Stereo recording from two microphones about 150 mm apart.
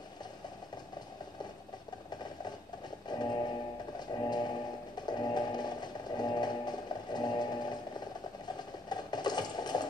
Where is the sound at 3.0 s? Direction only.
30° left (ahead or behind).